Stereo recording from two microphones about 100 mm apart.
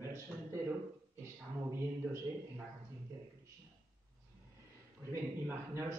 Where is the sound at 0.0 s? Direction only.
25° right (ahead or behind).